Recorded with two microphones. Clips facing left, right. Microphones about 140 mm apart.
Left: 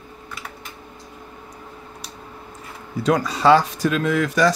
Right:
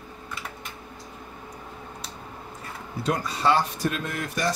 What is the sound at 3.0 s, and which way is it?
Speech, 90° left.